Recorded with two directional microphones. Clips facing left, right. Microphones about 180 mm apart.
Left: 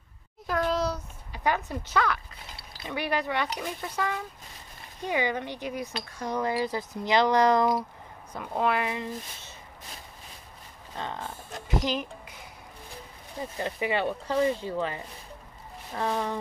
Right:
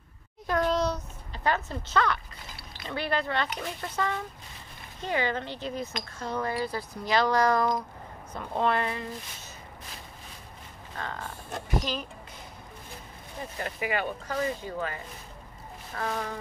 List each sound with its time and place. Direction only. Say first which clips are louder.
0.5 s a sound: right 1 dB; 5° left (ahead or behind)
2.9 s speech: left 1 dB; 15° left (ahead or behind)
8.3 s speech: even; 10° left (ahead or behind)
11.0 s speech: left 2 dB; 20° left (ahead or behind)
13.6 s speech: left 3 dB; 25° left (ahead or behind)